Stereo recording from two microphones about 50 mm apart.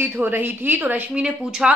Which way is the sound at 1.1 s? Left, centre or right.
Centre.